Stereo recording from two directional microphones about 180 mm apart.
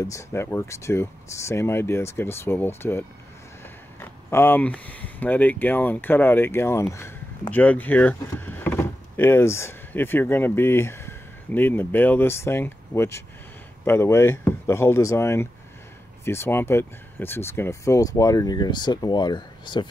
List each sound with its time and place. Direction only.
0.0 s speech: 15° left (ahead or behind)